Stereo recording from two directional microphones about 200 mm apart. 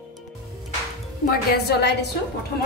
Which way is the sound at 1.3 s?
55° left (ahead or behind).